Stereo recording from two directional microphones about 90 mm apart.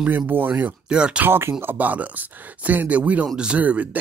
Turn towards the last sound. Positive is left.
turn(degrees=-15)  # may be behind; listen again after turning